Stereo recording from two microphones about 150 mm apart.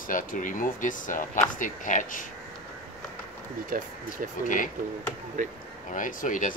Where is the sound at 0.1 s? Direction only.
65° left (ahead or behind).